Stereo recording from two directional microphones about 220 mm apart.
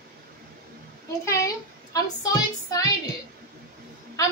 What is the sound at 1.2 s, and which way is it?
A woman's voice, 15° left (ahead or behind).